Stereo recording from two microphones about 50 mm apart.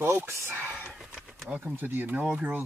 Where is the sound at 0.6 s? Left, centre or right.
Right.